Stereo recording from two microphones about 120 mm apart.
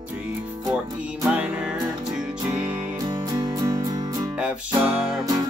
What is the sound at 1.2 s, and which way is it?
Music, 10° right (ahead or behind).